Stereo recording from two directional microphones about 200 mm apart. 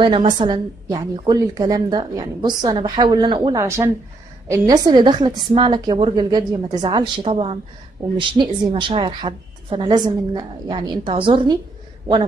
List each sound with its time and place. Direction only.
0.0 s a woman's voice: 25° right (ahead or behind)